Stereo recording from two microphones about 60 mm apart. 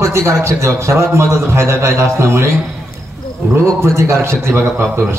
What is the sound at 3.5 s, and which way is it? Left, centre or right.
A man's voice, right.